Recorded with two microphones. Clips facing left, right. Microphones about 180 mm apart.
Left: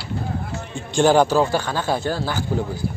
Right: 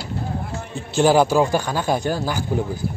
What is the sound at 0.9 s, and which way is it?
Speech, 5° right (ahead or behind).